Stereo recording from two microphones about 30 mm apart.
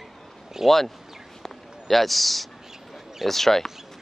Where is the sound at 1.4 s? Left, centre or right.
Centre.